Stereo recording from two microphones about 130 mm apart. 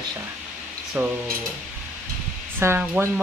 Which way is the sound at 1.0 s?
15° right (ahead or behind).